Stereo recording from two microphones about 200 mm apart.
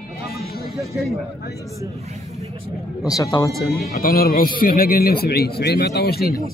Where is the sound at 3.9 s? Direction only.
45° left (ahead or behind).